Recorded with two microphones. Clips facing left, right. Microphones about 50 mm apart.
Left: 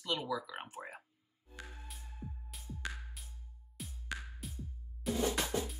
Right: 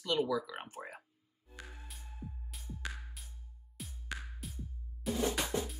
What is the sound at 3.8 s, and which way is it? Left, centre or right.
Music, centre.